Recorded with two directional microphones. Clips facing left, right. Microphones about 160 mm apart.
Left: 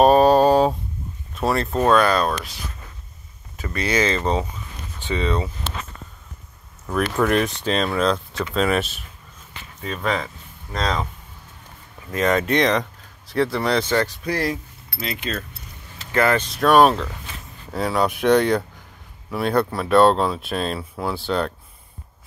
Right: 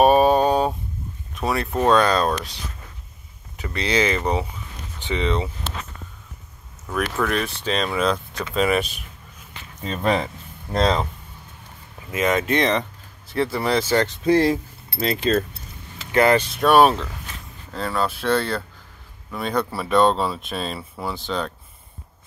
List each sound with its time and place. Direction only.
0.0 s a sound: 5° right (ahead or behind)
1.4 s speech: 5° right (ahead or behind)
1.8 s speech: 20° right (ahead or behind)
3.5 s speech: 15° right (ahead or behind)
7.2 s speech: 15° left (ahead or behind)
7.6 s speech: centre (ahead or behind)
9.8 s speech: 25° right (ahead or behind)
12.3 s speech: centre (ahead or behind)
14.0 s speech: 25° right (ahead or behind)
16.1 s speech: 20° right (ahead or behind)
16.5 s speech: centre (ahead or behind)
17.7 s speech: 15° left (ahead or behind)
19.3 s speech: 5° left (ahead or behind)